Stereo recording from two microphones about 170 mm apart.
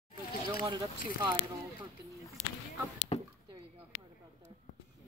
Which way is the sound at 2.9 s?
40° left (ahead or behind).